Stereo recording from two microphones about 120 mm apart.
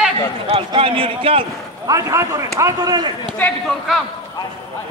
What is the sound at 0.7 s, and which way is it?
Speech, 50° right (ahead or behind).